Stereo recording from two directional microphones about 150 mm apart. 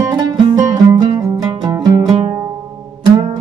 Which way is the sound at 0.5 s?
25° right (ahead or behind).